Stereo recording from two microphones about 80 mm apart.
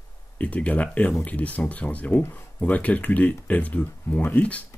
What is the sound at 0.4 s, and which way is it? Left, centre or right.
Speech, centre.